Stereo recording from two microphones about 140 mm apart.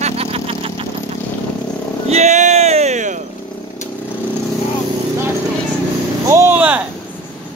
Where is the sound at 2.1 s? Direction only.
55° right (ahead or behind).